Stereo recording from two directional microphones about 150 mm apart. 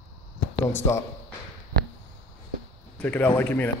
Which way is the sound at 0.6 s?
20° left (ahead or behind).